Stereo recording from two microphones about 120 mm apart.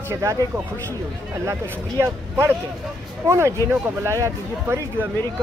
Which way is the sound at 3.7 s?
10° right (ahead or behind).